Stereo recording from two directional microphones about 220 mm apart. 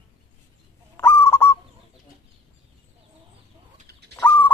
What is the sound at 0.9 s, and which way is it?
Goose, 10° left (ahead or behind).